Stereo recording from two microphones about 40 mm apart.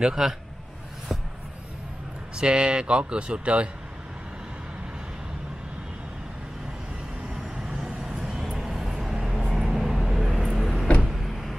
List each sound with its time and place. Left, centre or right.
0.0 s a man's voice: centre
2.3 s speech: right
7.7 s vehicle: centre